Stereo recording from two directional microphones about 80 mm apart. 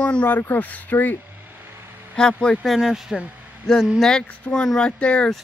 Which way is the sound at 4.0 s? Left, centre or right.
Centre.